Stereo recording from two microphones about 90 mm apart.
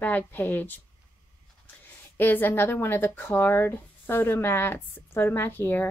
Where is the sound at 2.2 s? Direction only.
25° left (ahead or behind).